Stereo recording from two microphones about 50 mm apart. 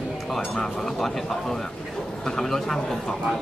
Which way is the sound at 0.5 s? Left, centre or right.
Centre.